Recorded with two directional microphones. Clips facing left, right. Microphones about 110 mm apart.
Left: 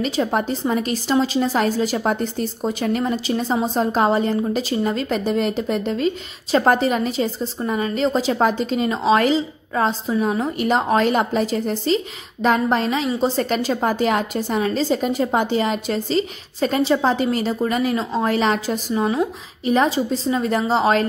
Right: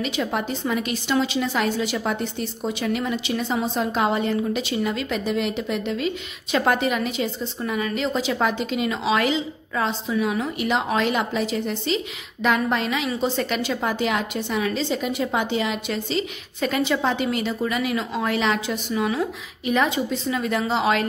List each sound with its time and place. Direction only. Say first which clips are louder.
0.0 s a woman's voice: left 4 dB; 35° left (ahead or behind)